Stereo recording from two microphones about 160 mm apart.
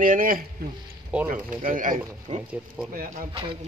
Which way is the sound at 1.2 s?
60° right (ahead or behind).